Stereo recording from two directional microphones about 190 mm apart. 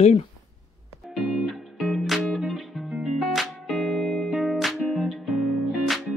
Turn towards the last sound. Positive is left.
turn(degrees=0)  # may be behind; listen again after turning